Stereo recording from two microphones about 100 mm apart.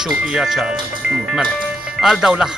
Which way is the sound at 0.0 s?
5° right (ahead or behind).